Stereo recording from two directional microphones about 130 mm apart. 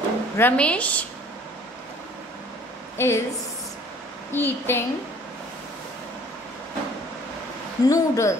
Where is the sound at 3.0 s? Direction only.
20° left (ahead or behind).